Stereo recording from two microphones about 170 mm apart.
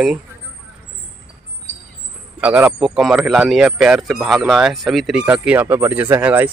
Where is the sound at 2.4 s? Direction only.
5° right (ahead or behind).